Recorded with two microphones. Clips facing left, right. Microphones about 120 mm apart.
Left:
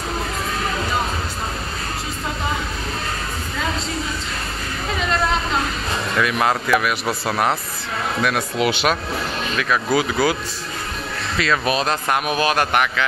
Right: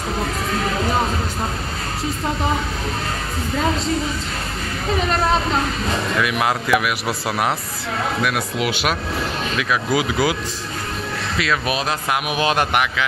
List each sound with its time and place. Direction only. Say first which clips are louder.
6.2 s a man's voice: left 1 dB; 10° right (ahead or behind)
11.3 s a man's voice: left 2 dB; 5° right (ahead or behind)
12.4 s a man's voice: right 2 dB; 20° right (ahead or behind)